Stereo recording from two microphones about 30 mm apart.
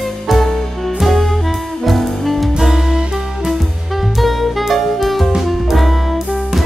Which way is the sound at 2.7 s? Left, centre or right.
Centre.